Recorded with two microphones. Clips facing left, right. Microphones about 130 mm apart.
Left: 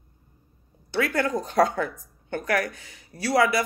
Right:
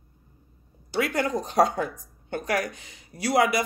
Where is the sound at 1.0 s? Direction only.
20° right (ahead or behind).